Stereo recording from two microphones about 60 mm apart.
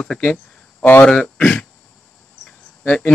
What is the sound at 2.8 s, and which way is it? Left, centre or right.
Speech, left.